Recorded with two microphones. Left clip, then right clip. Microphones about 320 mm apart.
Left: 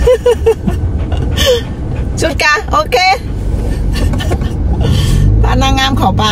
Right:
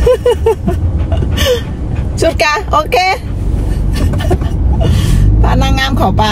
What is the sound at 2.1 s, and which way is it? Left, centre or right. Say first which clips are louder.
Speech: even; centre.